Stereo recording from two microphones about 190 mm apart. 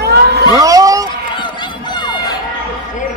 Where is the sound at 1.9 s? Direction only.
25° left (ahead or behind).